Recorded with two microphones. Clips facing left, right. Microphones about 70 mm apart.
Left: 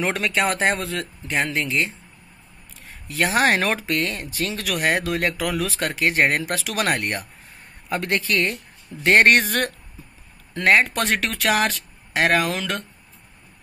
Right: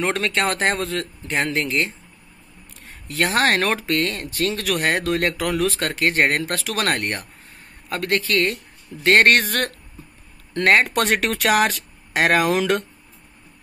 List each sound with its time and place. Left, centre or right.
0.0 s speech: centre
3.1 s speech: centre
7.9 s speech: centre
10.5 s speech: centre